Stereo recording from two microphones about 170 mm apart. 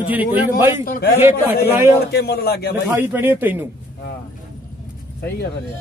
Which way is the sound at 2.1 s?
70° left (ahead or behind).